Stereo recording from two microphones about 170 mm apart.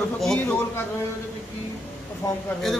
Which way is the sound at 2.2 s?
15° left (ahead or behind).